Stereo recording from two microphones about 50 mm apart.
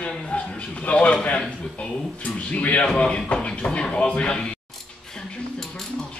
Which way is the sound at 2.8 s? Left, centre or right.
Centre.